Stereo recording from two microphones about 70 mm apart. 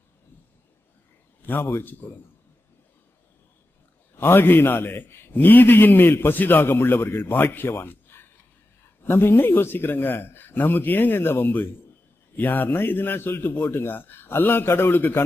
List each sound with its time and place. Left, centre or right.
1.4 s a man's voice: left
4.2 s a man's voice: left